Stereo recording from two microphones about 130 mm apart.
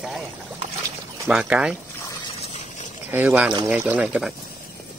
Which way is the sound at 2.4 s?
55° left (ahead or behind).